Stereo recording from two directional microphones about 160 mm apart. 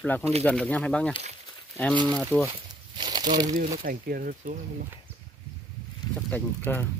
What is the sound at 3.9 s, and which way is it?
Speech, 65° right (ahead or behind).